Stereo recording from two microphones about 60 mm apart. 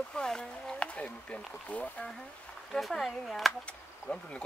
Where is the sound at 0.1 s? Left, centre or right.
Centre.